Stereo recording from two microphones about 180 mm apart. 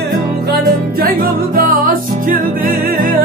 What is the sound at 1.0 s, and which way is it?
Music, 50° right (ahead or behind).